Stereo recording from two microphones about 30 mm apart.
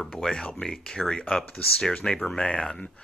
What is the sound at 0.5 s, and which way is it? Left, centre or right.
Speech, centre.